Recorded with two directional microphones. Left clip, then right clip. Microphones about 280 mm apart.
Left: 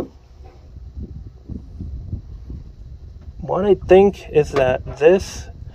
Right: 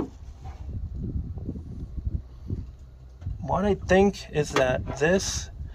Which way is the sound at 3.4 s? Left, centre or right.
Left.